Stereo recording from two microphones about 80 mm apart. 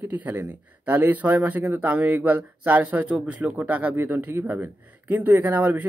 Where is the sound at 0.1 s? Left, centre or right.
Right.